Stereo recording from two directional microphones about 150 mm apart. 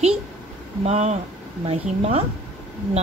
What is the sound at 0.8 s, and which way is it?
Speech, 45° right (ahead or behind).